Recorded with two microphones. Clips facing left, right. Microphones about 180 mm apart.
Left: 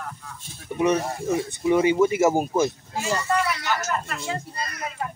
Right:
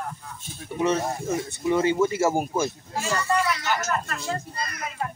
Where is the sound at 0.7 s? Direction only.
15° left (ahead or behind).